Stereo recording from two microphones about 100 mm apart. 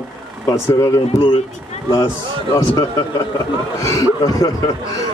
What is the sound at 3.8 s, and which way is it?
Speech, 35° left (ahead or behind).